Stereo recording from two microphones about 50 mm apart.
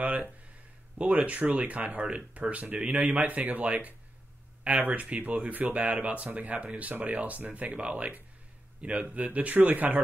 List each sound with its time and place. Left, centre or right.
0.0 s speech: right